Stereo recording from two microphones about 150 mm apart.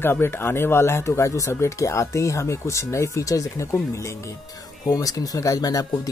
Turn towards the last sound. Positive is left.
turn(degrees=25)  # may be behind; listen again after turning